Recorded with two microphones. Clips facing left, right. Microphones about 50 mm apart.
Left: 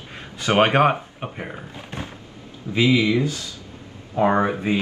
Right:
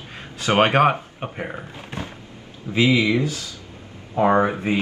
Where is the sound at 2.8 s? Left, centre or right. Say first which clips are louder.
Even; right.